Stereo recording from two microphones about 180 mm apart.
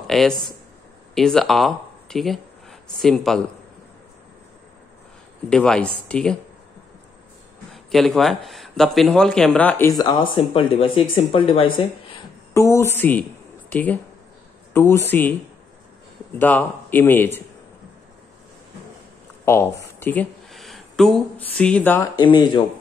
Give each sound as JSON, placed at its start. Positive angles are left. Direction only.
{"t": 0.0, "sound": "a sound", "side_deg": 0}
{"t": 1.1, "sound": "speech", "side_deg": 0}
{"t": 5.5, "sound": "speech", "side_deg": 5}
{"t": 7.7, "sound": "speech", "side_deg": 0}
{"t": 12.5, "sound": "speech", "side_deg": 15}
{"t": 16.3, "sound": "speech", "side_deg": 10}
{"t": 19.4, "sound": "speech", "side_deg": 15}
{"t": 20.5, "sound": "speech", "side_deg": 0}
{"t": 22.2, "sound": "speech", "side_deg": 25}